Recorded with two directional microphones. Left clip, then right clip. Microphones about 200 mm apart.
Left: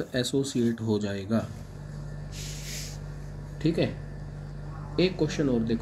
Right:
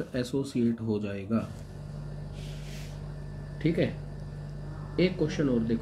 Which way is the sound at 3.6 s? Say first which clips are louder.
Left 1 dB; 15° left (ahead or behind).